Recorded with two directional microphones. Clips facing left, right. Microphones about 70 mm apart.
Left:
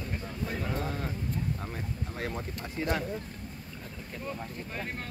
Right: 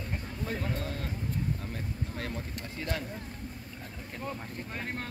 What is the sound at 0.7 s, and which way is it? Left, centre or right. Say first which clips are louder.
Speech: left 2 dB; centre.